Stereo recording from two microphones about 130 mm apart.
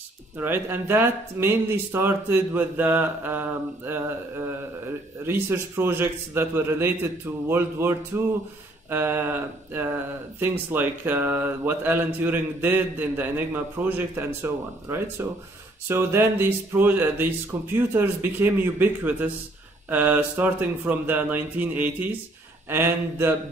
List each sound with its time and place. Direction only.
0.4 s speech: 15° right (ahead or behind)
5.2 s speech: 15° right (ahead or behind)